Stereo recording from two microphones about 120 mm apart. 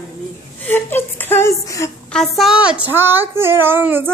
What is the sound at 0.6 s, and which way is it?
A woman's voice, 15° left (ahead or behind).